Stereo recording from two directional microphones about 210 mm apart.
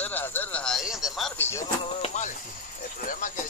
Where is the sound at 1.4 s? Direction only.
15° left (ahead or behind).